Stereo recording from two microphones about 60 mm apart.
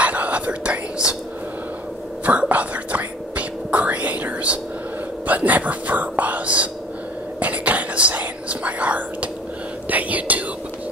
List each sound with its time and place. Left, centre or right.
0.0 s whispering: right
2.2 s whispering: right